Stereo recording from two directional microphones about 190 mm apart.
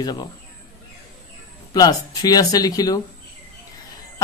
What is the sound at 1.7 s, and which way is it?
Speech, 20° left (ahead or behind).